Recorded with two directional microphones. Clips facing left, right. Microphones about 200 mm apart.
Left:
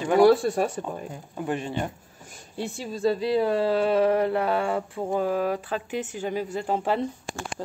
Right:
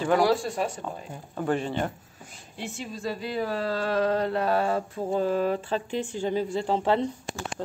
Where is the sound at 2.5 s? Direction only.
35° left (ahead or behind).